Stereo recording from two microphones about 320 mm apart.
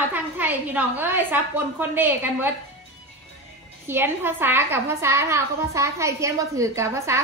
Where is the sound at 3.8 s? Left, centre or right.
Centre.